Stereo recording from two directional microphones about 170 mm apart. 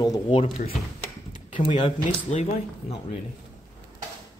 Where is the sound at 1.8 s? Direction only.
35° left (ahead or behind).